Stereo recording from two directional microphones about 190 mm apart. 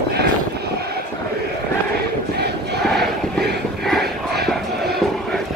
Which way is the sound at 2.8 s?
Centre (ahead or behind).